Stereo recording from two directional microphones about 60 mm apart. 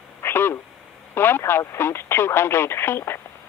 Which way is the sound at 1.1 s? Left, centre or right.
Left.